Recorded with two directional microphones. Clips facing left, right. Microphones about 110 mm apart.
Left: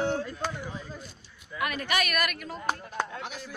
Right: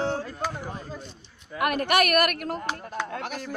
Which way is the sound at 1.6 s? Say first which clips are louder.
Right 7 dB; 55° right (ahead or behind).